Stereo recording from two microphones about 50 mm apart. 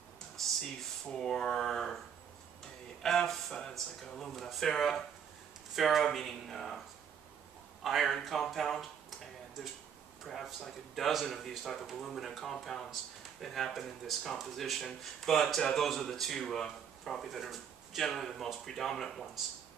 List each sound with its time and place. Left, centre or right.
1.0 s a sound: centre
3.0 s speech: centre
7.8 s speech: centre
10.2 s speech: centre